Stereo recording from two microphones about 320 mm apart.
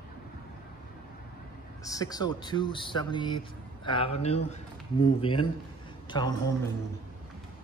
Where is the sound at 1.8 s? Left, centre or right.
Centre.